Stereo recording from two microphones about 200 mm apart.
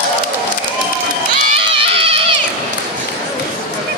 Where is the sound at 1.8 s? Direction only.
30° right (ahead or behind).